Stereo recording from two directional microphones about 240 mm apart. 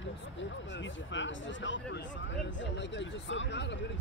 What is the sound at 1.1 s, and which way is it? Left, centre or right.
Speech, left.